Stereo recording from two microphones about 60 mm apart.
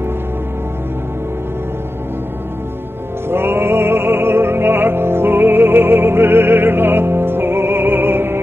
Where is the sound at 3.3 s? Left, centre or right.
Right.